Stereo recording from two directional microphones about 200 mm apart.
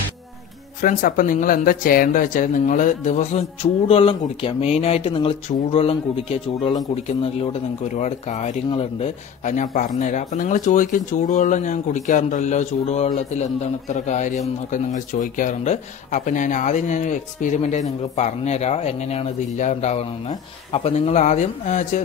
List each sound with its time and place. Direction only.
0.7 s speech: 40° left (ahead or behind)
8.6 s speech: 25° left (ahead or behind)
9.4 s speech: 40° left (ahead or behind)